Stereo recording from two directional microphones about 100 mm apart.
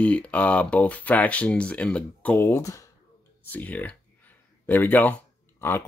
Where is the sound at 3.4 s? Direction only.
15° left (ahead or behind).